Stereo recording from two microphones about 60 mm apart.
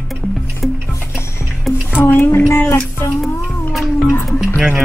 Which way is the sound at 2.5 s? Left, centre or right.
Left.